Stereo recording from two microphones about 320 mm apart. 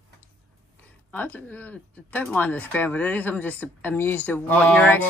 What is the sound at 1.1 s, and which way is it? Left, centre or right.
Speech, centre.